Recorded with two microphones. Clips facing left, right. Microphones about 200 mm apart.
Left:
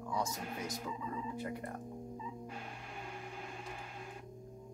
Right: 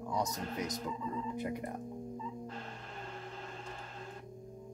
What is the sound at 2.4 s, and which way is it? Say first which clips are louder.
Music: right 2 dB; 10° left (ahead or behind).